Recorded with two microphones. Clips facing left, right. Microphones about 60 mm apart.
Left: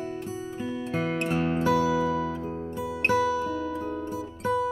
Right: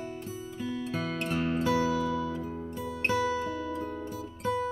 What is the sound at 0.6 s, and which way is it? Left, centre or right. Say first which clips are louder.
Music: left 3 dB; left.